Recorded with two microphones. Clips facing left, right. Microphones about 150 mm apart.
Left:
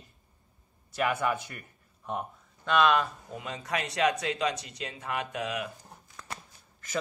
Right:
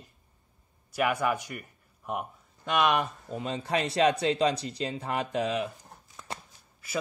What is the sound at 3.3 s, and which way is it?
Speech, 30° right (ahead or behind).